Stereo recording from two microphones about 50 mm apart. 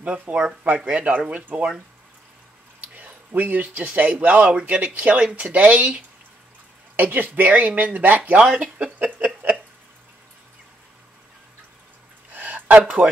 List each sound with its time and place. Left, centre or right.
0.0 s speech: right
3.3 s speech: right
12.3 s a sound: right